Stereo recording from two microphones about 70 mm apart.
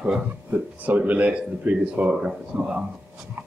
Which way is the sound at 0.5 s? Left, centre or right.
Right.